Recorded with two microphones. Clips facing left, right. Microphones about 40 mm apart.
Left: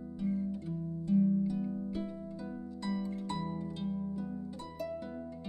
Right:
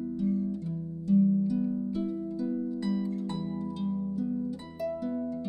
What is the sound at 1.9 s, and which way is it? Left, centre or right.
Harp, centre.